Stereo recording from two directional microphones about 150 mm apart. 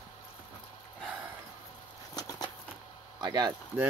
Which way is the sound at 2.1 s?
25° left (ahead or behind).